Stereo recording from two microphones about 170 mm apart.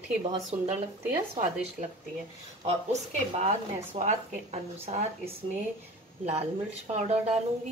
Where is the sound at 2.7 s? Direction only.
40° right (ahead or behind).